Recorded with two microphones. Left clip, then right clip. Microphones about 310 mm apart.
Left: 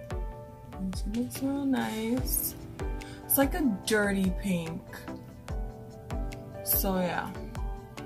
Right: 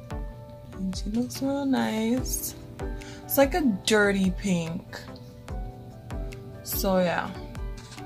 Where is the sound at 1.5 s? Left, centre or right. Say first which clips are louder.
Right 4 dB; centre.